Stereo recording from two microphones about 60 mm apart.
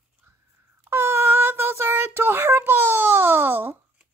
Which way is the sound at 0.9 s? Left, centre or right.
Right.